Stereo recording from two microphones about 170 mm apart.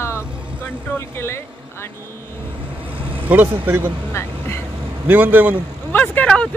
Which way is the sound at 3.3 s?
10° right (ahead or behind).